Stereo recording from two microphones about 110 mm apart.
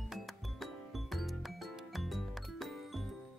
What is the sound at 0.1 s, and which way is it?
Music, centre (ahead or behind).